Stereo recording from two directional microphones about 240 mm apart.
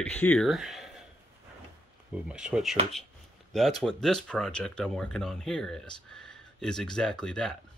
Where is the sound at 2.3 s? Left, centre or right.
Centre.